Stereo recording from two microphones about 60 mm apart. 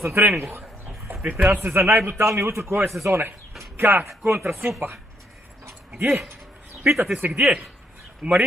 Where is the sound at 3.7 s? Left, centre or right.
Right.